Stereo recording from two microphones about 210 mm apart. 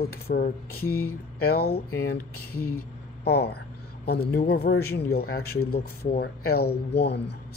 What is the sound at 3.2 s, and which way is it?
A man's voice, 50° left (ahead or behind).